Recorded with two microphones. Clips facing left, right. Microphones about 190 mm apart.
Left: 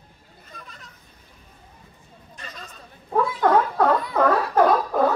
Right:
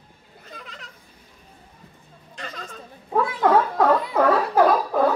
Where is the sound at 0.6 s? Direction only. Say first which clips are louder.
Right 2 dB; 90° right.